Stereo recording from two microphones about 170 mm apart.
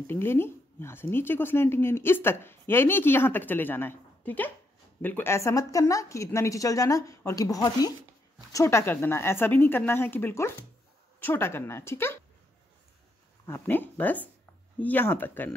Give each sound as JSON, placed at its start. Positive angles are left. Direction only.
{"t": 0.0, "sound": "a woman's voice", "side_deg": 15}
{"t": 13.5, "sound": "speech", "side_deg": 10}